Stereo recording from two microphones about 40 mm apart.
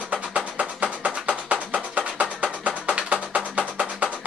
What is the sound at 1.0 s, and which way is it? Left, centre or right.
Music, right.